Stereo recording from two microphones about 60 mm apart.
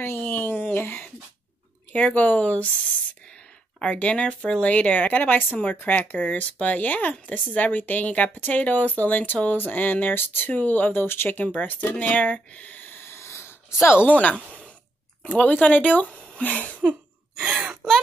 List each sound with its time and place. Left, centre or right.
0.0 s a sound: left
1.9 s speech: left
3.8 s speech: left
14.0 s speech: left
15.3 s speech: centre
17.5 s gasp: right